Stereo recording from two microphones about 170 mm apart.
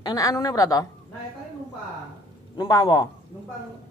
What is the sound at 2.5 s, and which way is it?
Speech, 25° left (ahead or behind).